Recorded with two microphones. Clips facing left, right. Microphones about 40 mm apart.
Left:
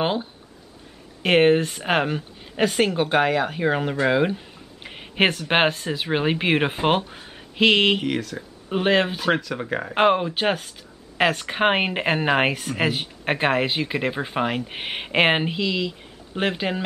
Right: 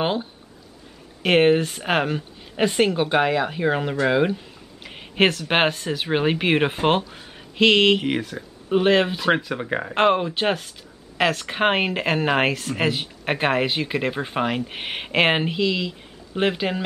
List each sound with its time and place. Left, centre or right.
0.0 s speech: centre
4.8 s a sound: centre
5.5 s speech: centre
8.0 s speech: centre
8.4 s speech: centre